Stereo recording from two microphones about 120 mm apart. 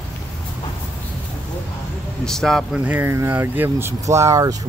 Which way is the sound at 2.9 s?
15° right (ahead or behind).